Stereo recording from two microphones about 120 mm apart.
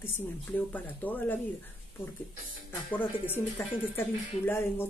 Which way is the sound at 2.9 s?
15° left (ahead or behind).